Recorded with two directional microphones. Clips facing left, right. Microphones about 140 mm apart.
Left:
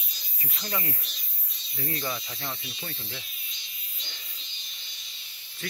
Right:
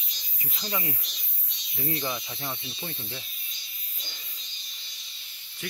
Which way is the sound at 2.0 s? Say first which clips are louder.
Right 1 dB; 15° right (ahead or behind).